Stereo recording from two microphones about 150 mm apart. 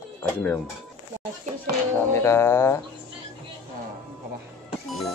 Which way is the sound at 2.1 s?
15° left (ahead or behind).